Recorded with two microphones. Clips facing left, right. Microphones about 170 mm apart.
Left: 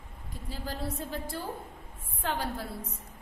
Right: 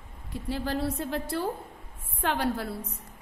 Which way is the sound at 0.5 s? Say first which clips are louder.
Right 7 dB; 70° right (ahead or behind).